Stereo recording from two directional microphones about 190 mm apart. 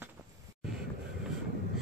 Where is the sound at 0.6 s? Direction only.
5° right (ahead or behind).